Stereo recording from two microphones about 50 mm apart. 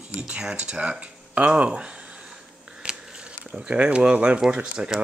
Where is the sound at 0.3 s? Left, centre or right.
Centre.